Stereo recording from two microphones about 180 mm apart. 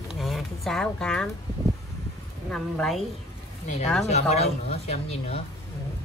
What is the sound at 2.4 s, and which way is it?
Speech, 5° left (ahead or behind).